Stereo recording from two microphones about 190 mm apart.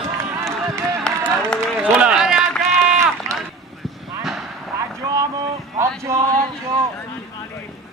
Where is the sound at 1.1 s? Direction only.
10° right (ahead or behind).